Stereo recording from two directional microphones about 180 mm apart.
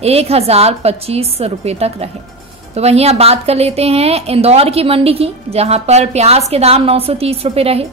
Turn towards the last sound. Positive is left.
turn(degrees=-35)  # may be behind; listen again after turning